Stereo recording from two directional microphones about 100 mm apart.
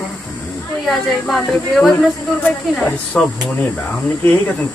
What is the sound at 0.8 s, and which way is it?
Speech, centre (ahead or behind).